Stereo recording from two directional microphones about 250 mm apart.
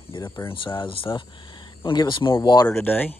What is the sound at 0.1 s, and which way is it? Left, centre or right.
Speech, centre.